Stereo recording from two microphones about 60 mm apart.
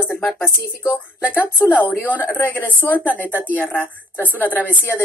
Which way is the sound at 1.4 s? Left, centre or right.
Left.